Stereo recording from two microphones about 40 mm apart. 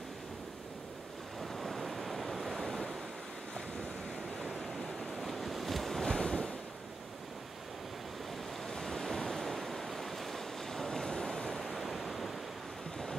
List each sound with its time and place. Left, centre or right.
1.4 s waves: centre
4.6 s waves: centre
6.0 s waves: centre
8.6 s waves: centre
11.6 s waves: centre